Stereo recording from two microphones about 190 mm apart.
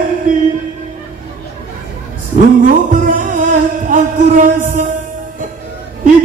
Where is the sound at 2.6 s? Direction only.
45° right (ahead or behind).